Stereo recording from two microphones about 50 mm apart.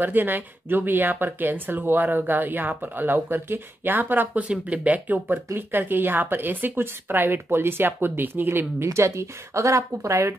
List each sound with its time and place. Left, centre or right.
0.0 s speech: right
4.5 s speech: right
5.6 s a woman's voice: right
8.8 s speech: right